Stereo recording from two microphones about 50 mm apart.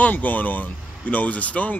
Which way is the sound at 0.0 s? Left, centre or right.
Left.